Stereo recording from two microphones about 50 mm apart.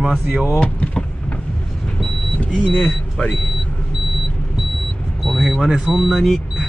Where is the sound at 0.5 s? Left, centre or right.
Left.